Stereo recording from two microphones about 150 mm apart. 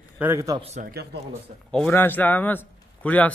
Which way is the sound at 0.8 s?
90° right.